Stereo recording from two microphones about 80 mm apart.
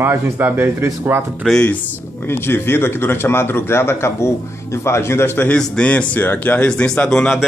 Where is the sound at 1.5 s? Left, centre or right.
Centre.